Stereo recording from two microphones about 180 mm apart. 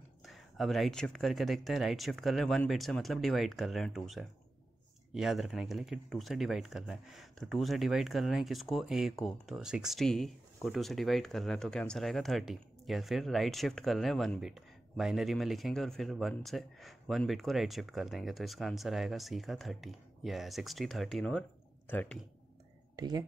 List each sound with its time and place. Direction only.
0.2 s speech: centre (ahead or behind)
22.9 s speech: 20° right (ahead or behind)